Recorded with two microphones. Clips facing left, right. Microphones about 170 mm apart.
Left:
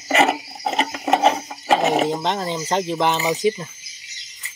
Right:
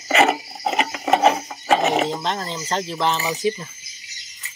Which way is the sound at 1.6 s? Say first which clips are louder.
Left 1 dB; 5° left (ahead or behind).